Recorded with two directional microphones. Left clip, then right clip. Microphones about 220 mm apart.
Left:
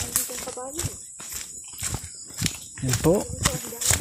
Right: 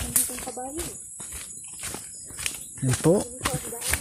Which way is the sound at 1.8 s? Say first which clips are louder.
Left 3 dB; 40° left (ahead or behind).